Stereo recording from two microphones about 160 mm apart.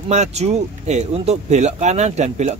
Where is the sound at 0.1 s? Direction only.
45° right (ahead or behind).